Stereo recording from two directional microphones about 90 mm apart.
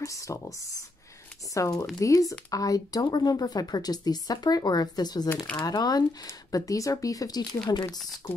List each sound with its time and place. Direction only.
0.0 s speech: 35° left (ahead or behind)
8.2 s speech: 40° left (ahead or behind)